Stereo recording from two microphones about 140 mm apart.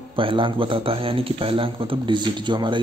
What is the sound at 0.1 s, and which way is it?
A man's voice, 40° right (ahead or behind).